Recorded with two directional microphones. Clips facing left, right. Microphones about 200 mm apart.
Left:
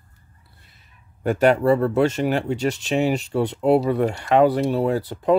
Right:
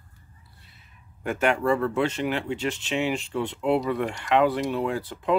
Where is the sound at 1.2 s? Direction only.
35° left (ahead or behind).